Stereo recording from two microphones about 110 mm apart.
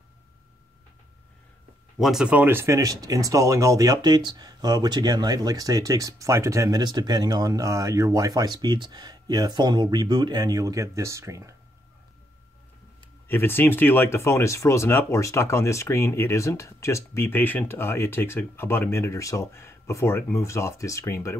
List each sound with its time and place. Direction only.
2.0 s speech: 5° right (ahead or behind)
2.3 s speech: 20° right (ahead or behind)
13.3 s speech: 20° left (ahead or behind)